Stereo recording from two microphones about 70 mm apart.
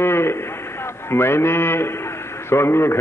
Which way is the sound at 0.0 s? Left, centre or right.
Left.